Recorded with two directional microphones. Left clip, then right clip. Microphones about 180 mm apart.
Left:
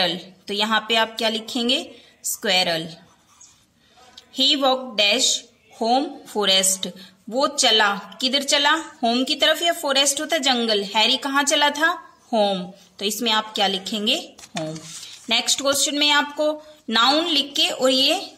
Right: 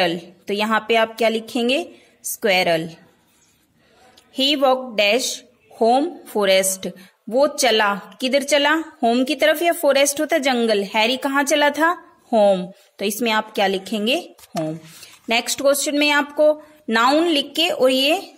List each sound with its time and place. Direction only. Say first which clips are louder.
0.0 s speech: right 2 dB; 50° right (ahead or behind)
4.4 s speech: right 1 dB; 50° right (ahead or behind)